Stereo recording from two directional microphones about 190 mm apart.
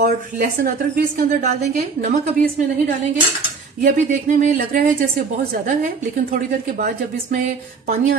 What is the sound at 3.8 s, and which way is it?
Speech, 40° right (ahead or behind).